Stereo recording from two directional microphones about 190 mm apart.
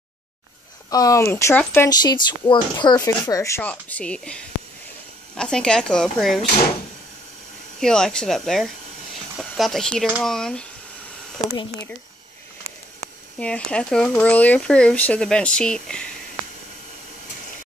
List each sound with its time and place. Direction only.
0.8 s speech: 20° left (ahead or behind); by 6.4 s centre (ahead or behind)
7.8 s speech: 5° left (ahead or behind)
13.4 s speech: 5° left (ahead or behind)